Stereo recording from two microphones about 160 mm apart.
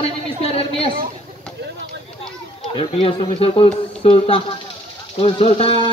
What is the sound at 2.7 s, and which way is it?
Speech, 35° left (ahead or behind).